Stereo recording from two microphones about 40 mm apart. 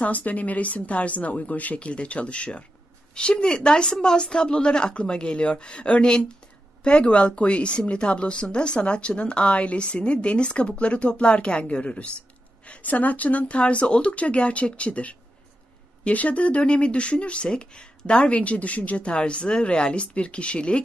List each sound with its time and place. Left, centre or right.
0.0 s speech: left